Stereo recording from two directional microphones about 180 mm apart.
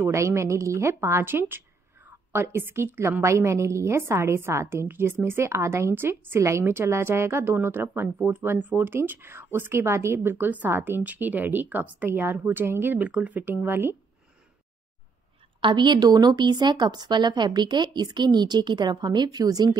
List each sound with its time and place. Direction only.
0.0 s a woman's voice: 15° right (ahead or behind)
15.6 s speech: 25° right (ahead or behind)